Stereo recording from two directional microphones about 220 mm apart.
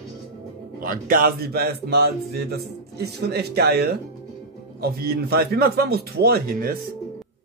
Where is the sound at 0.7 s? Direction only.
40° right (ahead or behind).